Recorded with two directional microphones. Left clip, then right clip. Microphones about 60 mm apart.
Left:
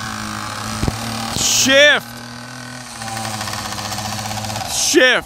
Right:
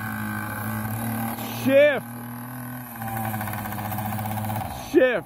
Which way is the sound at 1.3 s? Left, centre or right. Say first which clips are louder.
Left 7 dB; left.